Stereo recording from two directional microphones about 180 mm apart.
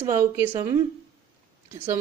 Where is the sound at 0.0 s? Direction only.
15° right (ahead or behind).